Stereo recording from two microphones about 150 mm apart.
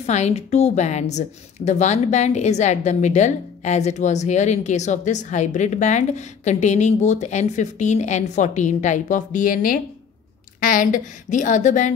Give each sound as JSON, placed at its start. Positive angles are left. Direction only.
{"t": 0.0, "sound": "a woman's voice", "side_deg": 50}